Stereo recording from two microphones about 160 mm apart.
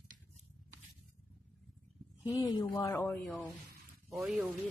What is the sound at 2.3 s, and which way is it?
Speech, 20° left (ahead or behind).